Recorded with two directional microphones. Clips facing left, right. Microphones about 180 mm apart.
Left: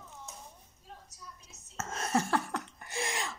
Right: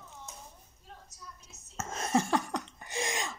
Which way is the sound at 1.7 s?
15° right (ahead or behind).